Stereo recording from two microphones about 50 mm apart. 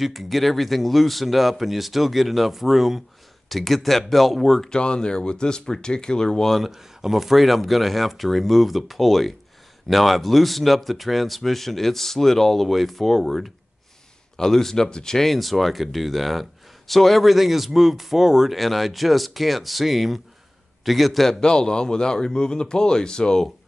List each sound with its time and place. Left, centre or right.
0.0 s speech: centre
4.6 s speech: centre
6.5 s speech: centre
21.4 s speech: centre